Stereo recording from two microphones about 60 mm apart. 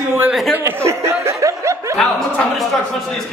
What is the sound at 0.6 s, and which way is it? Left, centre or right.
Speech, right.